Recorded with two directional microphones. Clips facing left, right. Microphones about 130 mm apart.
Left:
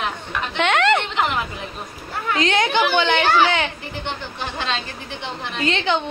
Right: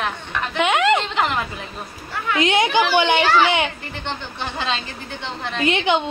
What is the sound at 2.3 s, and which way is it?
Speech, 15° right (ahead or behind).